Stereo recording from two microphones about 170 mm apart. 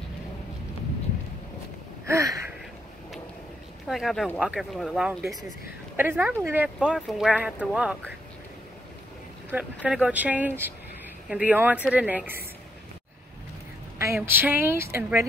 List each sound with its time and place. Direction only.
2.0 s gasp: 20° right (ahead or behind)
3.8 s speech: centre (ahead or behind)
9.5 s speech: 10° right (ahead or behind)
13.9 s speech: 15° right (ahead or behind)